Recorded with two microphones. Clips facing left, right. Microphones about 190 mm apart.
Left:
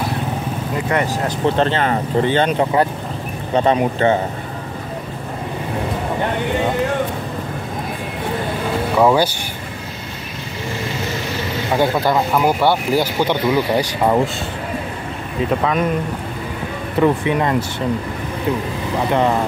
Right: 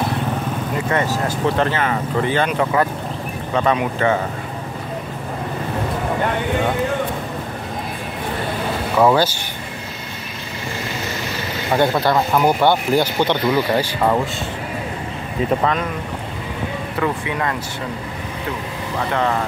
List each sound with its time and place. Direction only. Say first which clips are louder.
0.9 s speech: left 1 dB; 15° left (ahead or behind)
3.5 s speech: left 3 dB; 35° left (ahead or behind)
8.9 s speech: even; 10° left (ahead or behind)
11.7 s speech: even; 5° left (ahead or behind)
17.0 s speech: left 6 dB; 25° left (ahead or behind)
18.9 s speech: left 4 dB; 15° left (ahead or behind)